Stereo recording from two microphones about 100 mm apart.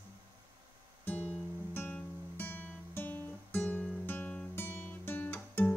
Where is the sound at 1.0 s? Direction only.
15° left (ahead or behind).